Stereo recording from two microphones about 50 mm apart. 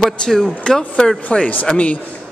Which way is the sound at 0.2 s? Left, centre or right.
Centre.